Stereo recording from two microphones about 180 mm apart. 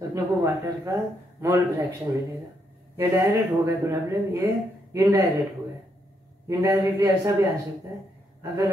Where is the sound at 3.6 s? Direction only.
15° right (ahead or behind).